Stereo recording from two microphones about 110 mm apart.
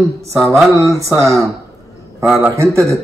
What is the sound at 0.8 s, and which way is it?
Speech, 30° right (ahead or behind).